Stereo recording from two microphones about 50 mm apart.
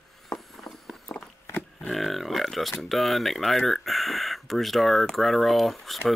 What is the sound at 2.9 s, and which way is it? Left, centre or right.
Speech, centre.